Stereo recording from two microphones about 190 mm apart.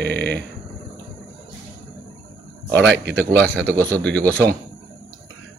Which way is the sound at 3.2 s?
5° left (ahead or behind).